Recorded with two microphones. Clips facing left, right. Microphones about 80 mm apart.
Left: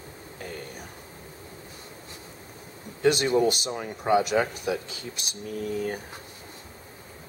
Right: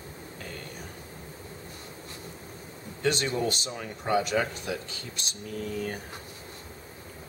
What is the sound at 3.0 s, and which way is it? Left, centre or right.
Speech, centre.